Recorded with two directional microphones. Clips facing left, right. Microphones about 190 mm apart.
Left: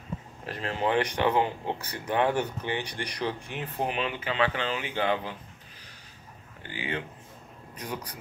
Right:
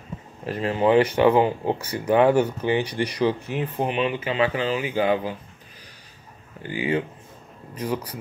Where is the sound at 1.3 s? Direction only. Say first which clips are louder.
Right 7 dB; 50° right (ahead or behind).